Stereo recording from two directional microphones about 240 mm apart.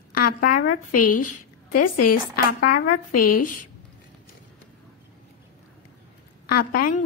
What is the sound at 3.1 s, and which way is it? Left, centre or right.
Speech, left.